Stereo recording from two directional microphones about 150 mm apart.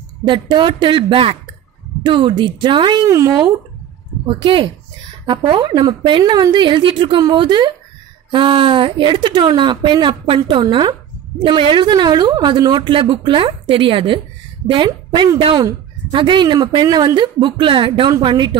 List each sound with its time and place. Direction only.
0.2 s a woman's voice: 30° right (ahead or behind)
3.1 s speech: 20° right (ahead or behind)
4.3 s a woman's voice: 35° right (ahead or behind)